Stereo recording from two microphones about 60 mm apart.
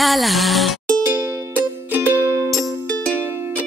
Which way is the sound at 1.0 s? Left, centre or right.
Right.